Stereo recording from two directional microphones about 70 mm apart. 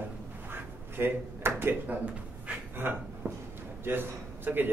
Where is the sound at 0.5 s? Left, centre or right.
Right.